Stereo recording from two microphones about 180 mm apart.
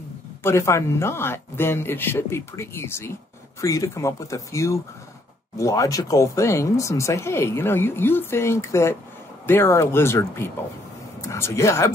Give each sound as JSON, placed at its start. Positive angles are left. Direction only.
{"t": 0.4, "sound": "speech", "side_deg": 15}